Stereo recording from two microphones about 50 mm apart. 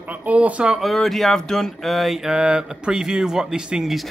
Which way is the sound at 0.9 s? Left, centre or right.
Centre.